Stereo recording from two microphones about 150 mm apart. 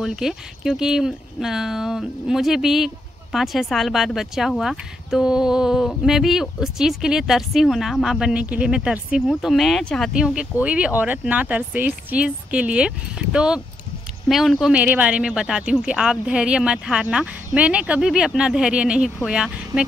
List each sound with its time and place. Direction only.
0.0 s speech: 5° right (ahead or behind)